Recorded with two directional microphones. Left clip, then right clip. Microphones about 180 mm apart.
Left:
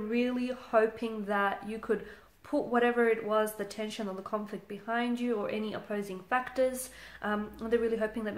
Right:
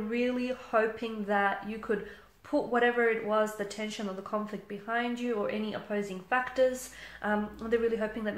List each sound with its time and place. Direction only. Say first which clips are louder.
0.1 s speech: right 1 dB; 35° left (ahead or behind)